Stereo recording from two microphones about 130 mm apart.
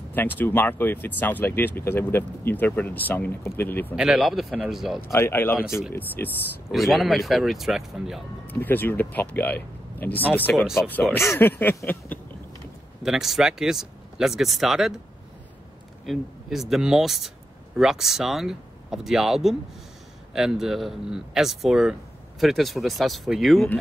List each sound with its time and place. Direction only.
0.1 s speech: 15° left (ahead or behind)
3.9 s speech: 5° right (ahead or behind)
5.0 s speech: 20° left (ahead or behind)
6.7 s speech: centre (ahead or behind)
8.5 s speech: 15° left (ahead or behind)
13.0 s speech: 5° right (ahead or behind)
16.1 s speech: centre (ahead or behind)